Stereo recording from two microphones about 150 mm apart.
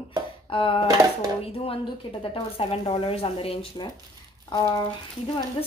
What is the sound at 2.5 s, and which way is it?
Speech, 40° left (ahead or behind).